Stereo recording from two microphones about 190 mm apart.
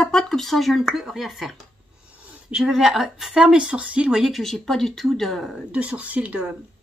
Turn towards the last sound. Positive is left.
turn(degrees=-5)  # may be behind; listen again after turning